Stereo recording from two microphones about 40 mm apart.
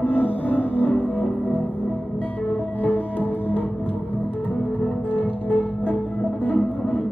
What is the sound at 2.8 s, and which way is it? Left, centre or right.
Music, left.